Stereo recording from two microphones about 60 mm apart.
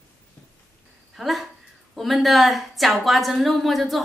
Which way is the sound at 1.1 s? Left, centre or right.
Centre.